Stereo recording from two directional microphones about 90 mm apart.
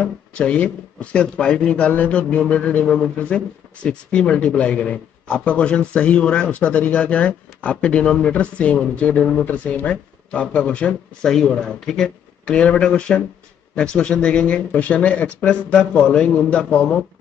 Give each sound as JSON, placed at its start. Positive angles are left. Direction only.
{"t": 0.0, "sound": "speech", "side_deg": 15}